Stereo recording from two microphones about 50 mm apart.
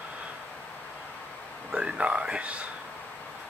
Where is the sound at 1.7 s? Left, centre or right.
Right.